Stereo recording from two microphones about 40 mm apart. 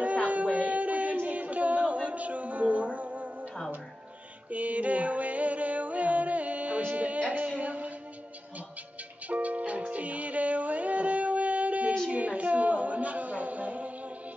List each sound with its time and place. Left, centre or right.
0.3 s music: right
1.1 s a sound: right
4.5 s music: right
9.3 s music: right
12.1 s a capella: right